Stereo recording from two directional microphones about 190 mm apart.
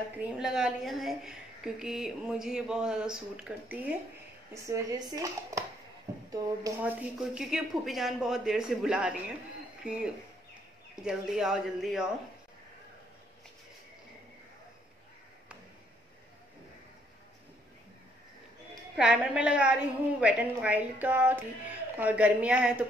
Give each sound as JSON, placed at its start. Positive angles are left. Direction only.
{"t": 0.2, "sound": "a woman's voice", "side_deg": -5}
{"t": 6.1, "sound": "a sound", "side_deg": -15}
{"t": 6.8, "sound": "a woman's voice", "side_deg": -5}
{"t": 18.9, "sound": "a woman's voice", "side_deg": -5}